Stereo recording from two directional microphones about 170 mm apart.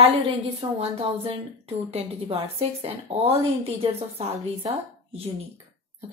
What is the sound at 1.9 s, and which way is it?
A woman's voice, 35° right (ahead or behind).